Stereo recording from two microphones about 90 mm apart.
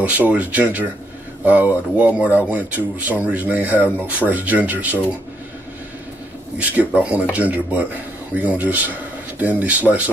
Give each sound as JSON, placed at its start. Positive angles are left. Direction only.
{"t": 0.0, "sound": "speech", "side_deg": -15}
{"t": 6.7, "sound": "speech", "side_deg": -15}